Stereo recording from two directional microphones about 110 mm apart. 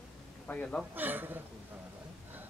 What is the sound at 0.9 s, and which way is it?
Speech, 15° right (ahead or behind).